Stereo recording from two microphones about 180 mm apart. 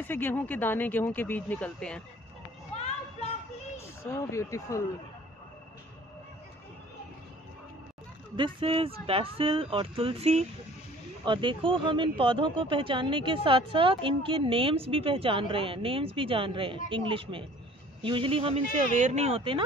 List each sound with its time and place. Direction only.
0.0 s speech: 10° left (ahead or behind)
4.1 s speech: 15° left (ahead or behind)
8.4 s speech: 30° right (ahead or behind)